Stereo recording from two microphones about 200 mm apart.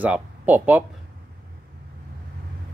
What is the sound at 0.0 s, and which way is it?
Speech, 10° right (ahead or behind).